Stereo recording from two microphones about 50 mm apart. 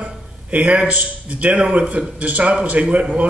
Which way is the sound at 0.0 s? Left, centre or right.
Right.